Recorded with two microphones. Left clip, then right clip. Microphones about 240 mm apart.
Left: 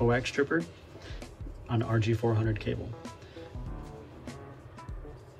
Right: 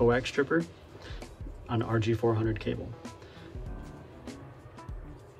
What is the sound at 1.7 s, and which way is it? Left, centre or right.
Speech, centre.